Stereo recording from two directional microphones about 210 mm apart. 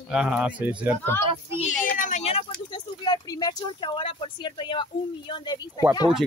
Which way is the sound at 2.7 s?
20° left (ahead or behind).